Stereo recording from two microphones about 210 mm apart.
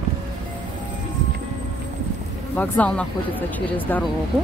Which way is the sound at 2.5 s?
5° left (ahead or behind).